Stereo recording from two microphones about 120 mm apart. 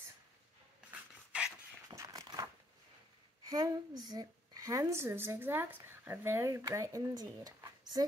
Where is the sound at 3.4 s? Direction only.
35° right (ahead or behind).